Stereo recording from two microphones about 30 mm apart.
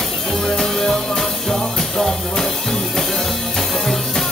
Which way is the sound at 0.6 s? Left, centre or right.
Centre.